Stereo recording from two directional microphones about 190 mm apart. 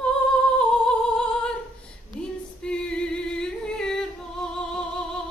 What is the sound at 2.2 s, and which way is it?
Singing, 5° left (ahead or behind).